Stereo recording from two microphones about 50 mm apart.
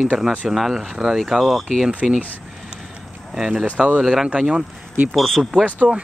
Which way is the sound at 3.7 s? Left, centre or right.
Right.